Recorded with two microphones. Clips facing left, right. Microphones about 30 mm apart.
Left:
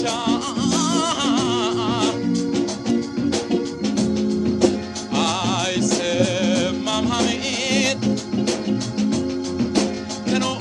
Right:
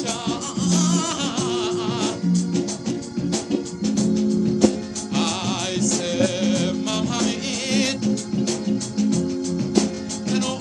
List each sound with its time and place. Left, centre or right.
0.3 s music: left